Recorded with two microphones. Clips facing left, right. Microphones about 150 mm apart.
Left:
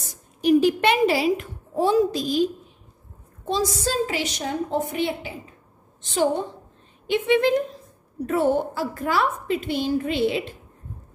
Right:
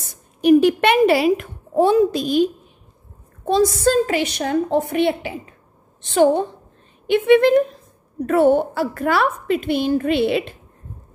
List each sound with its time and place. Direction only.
0.4 s a woman's voice: 60° right (ahead or behind)
7.1 s a woman's voice: 60° right (ahead or behind)